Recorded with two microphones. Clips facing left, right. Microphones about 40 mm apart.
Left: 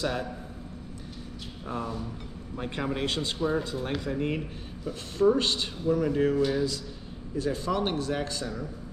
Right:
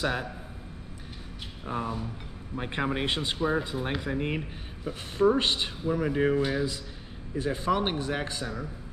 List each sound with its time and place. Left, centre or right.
0.0 s speech: right
1.7 s speech: right